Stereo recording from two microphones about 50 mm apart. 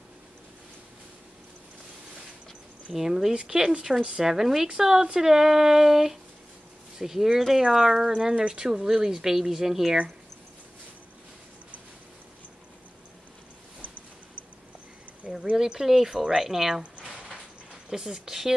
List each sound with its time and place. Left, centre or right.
2.9 s speech: centre
15.5 s speech: centre
17.8 s speech: centre